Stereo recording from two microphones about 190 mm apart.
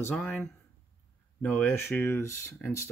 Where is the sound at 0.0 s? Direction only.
5° left (ahead or behind).